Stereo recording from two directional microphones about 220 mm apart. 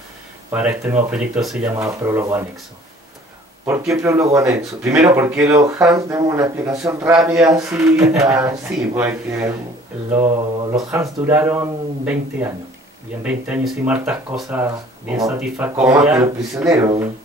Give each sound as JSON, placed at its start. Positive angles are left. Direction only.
{"t": 0.5, "sound": "speech", "side_deg": -10}
{"t": 3.6, "sound": "speech", "side_deg": -15}